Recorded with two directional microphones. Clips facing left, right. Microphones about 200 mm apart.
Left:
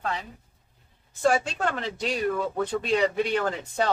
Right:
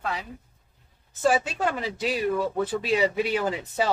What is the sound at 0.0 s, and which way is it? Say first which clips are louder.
Speech: even; 5° right (ahead or behind).